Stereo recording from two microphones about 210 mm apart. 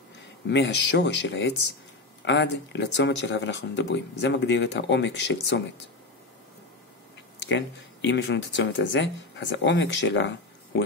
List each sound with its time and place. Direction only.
0.5 s speech: 55° left (ahead or behind)
7.4 s speech: 55° left (ahead or behind)